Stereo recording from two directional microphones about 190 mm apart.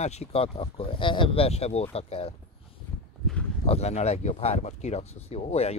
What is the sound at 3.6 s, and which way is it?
Speech, 35° left (ahead or behind).